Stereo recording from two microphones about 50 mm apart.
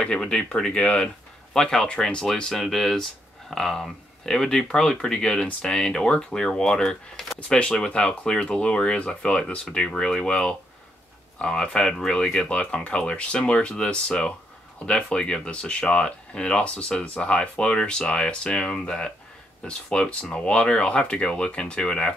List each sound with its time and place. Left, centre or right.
0.0 s speech: centre